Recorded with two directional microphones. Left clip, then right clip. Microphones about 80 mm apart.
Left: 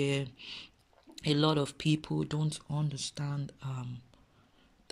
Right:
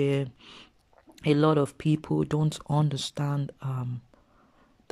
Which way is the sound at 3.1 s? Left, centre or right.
Right.